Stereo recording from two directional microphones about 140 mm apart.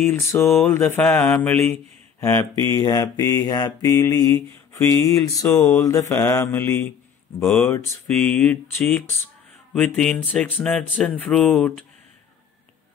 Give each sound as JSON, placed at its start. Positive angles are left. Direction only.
{"t": 0.0, "sound": "mantra", "side_deg": 15}
{"t": 1.7, "sound": "speech", "side_deg": 20}
{"t": 2.6, "sound": "mantra", "side_deg": 25}
{"t": 8.2, "sound": "mantra", "side_deg": 10}
{"t": 10.6, "sound": "speech", "side_deg": 5}